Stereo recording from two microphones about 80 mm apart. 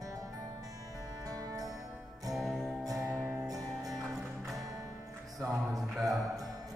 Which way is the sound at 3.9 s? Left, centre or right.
Centre.